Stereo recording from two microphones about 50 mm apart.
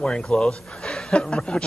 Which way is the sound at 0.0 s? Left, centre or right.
Centre.